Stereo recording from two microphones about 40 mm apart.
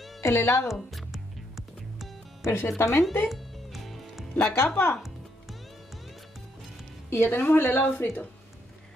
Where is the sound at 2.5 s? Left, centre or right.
Left.